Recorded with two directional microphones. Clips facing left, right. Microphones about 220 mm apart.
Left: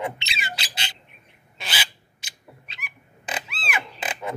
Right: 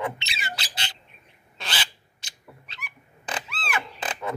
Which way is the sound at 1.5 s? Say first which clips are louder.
Even; 10° left (ahead or behind).